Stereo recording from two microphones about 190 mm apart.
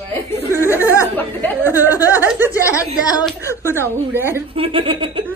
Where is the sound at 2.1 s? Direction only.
10° right (ahead or behind).